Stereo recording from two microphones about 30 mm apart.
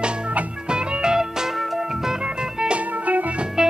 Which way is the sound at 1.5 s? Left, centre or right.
Centre.